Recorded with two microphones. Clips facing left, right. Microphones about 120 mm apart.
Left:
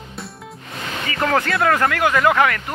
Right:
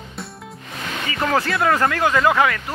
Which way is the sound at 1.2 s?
10° right (ahead or behind).